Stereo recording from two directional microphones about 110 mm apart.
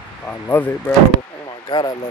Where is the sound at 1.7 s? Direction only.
40° left (ahead or behind).